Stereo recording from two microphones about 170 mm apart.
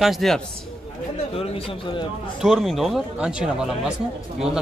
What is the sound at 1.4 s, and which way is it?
Speech, 30° left (ahead or behind).